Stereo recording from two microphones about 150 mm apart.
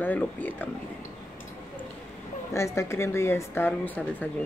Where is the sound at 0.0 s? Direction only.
10° left (ahead or behind).